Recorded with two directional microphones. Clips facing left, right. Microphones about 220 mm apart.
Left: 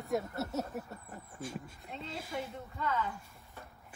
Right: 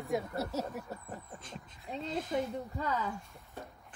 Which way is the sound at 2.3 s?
40° right (ahead or behind).